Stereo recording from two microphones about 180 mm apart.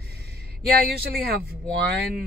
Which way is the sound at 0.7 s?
60° right (ahead or behind).